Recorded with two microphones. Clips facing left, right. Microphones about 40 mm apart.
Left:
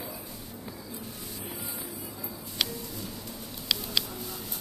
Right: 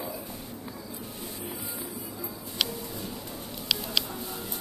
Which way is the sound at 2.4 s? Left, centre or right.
Centre.